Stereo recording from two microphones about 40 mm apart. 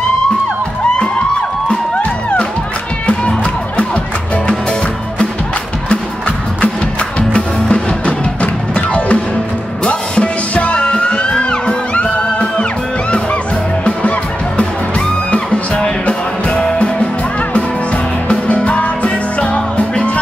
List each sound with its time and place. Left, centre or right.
3.1 s music: left
7.2 s music: left
14.6 s music: left
18.3 s music: left
19.0 s music: left